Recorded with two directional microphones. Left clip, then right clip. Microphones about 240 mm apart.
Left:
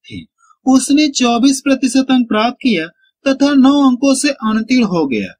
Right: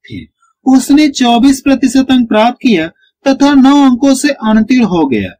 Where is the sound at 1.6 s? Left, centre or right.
Left.